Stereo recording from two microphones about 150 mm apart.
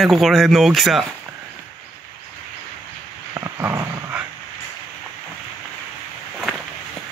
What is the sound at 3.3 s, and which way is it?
Dog, 20° right (ahead or behind).